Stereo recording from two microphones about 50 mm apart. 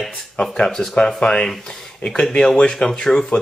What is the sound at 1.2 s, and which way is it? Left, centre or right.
Speech, centre.